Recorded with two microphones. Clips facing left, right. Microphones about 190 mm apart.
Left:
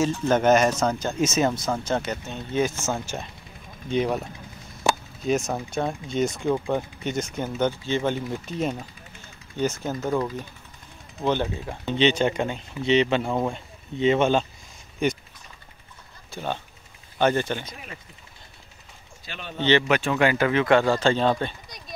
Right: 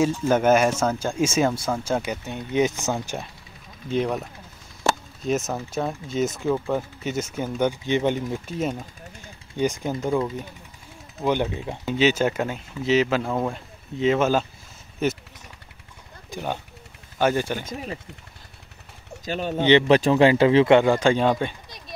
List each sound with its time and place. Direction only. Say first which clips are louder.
0.0 s speech: right 1 dB; 10° right (ahead or behind)
3.9 s speech: even; centre (ahead or behind); by 8.2 s 15° right (ahead or behind)
8.3 s speech: right 1 dB; 5° right (ahead or behind)
11.8 s speech: right 1 dB; 5° right (ahead or behind)
16.3 s a sound: right 1 dB; 15° right (ahead or behind)
17.2 s speech: even; 10° right (ahead or behind)
19.2 s speech: right 11 dB; 40° right (ahead or behind)
19.9 s speech: right 5 dB; 30° right (ahead or behind); by 21.7 s 10° right (ahead or behind)